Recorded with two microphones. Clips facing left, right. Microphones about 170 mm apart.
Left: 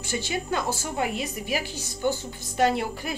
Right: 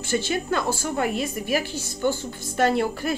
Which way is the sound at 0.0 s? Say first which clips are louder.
Right 5 dB; 15° left (ahead or behind).